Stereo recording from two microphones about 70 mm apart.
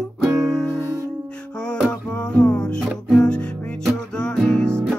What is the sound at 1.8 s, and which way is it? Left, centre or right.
Music, centre.